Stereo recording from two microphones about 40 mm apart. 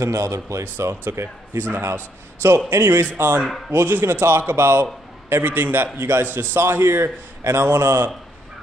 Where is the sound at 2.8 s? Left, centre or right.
Right.